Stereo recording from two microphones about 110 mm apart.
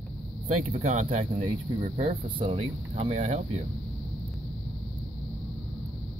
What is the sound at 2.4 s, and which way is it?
Speech, 65° right (ahead or behind).